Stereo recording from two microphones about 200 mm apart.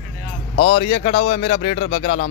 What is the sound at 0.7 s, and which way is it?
Speech, 35° left (ahead or behind).